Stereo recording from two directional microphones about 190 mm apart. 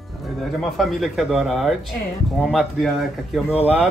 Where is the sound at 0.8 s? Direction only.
Centre (ahead or behind).